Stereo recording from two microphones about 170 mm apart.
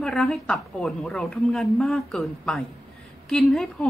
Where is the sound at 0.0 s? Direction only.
Centre (ahead or behind).